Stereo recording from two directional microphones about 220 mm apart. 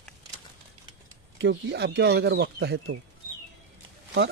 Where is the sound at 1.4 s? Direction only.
50° right (ahead or behind).